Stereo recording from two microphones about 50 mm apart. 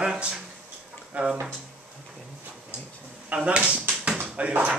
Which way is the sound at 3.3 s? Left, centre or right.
Right.